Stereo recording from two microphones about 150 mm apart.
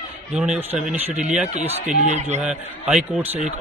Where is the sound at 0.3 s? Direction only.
5° right (ahead or behind).